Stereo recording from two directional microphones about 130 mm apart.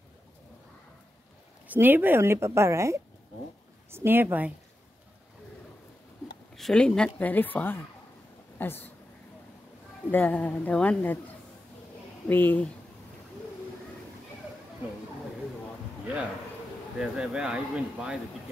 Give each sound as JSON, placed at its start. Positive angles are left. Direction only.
{"t": 1.7, "sound": "a woman's voice", "side_deg": -15}
{"t": 6.5, "sound": "a woman's voice", "side_deg": 5}
{"t": 10.1, "sound": "a woman's voice", "side_deg": 10}
{"t": 17.0, "sound": "speech", "side_deg": -5}